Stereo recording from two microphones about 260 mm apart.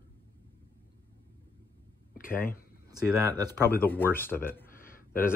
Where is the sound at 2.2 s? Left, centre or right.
Left.